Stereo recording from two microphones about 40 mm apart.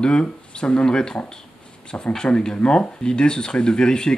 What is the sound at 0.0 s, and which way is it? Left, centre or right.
Speech, left.